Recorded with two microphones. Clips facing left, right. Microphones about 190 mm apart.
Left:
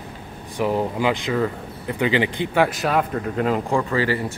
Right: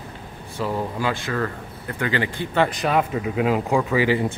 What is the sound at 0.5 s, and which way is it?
Speech, 20° left (ahead or behind).